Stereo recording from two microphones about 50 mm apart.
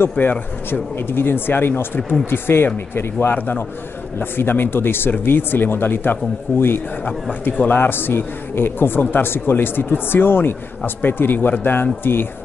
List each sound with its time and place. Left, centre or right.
0.2 s speech: left